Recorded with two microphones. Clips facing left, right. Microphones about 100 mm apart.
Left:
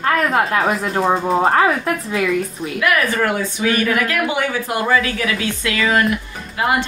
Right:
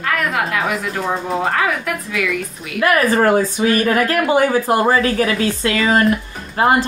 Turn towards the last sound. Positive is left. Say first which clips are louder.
# right 4 dB
turn(degrees=-40)  # may be behind; listen again after turning